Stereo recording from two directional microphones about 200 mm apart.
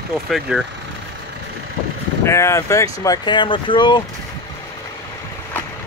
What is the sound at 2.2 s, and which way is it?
Speech, 15° left (ahead or behind).